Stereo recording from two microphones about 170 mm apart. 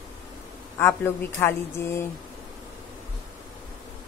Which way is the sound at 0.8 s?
15° left (ahead or behind).